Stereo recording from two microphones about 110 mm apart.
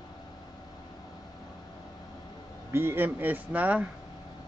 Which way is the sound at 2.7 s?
20° right (ahead or behind).